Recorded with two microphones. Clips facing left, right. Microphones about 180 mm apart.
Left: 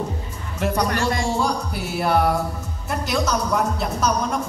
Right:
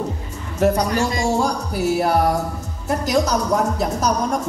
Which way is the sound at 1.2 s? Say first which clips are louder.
Right 3 dB; 45° right (ahead or behind).